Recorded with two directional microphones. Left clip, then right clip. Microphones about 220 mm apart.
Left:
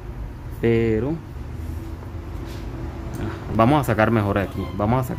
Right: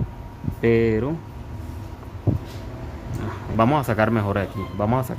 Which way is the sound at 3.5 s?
Centre (ahead or behind).